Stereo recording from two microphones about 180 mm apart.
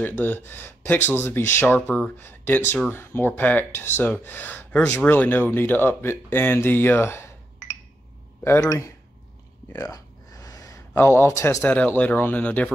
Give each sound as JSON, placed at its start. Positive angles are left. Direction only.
{"t": 0.0, "sound": "speech", "side_deg": 10}
{"t": 8.5, "sound": "speech", "side_deg": 15}
{"t": 9.7, "sound": "a sound", "side_deg": 15}
{"t": 10.9, "sound": "speech", "side_deg": 10}